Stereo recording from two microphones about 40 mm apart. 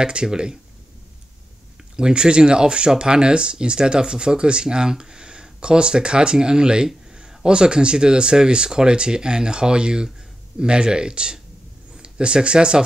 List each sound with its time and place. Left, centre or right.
0.0 s speech: centre
2.0 s speech: right